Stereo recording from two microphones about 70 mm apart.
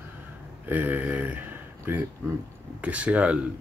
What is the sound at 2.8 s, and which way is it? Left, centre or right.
Speech, centre.